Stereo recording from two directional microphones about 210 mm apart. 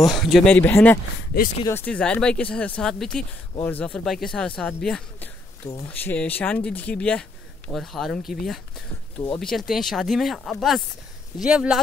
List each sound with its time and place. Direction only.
0.1 s speech: centre (ahead or behind)